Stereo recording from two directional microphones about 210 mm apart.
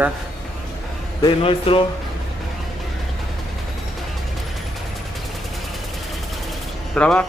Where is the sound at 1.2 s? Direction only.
25° left (ahead or behind).